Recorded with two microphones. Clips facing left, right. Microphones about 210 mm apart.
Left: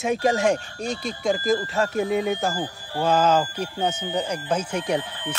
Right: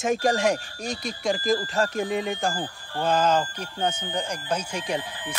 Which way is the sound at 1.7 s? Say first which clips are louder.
Left 3 dB; centre (ahead or behind).